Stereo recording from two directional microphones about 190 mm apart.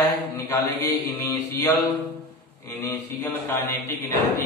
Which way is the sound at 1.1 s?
10° left (ahead or behind).